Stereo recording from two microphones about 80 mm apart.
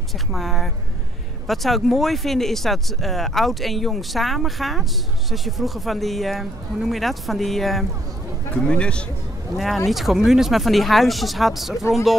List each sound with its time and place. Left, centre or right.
0.3 s speech: centre
8.5 s a man's voice: centre
9.8 s speech: centre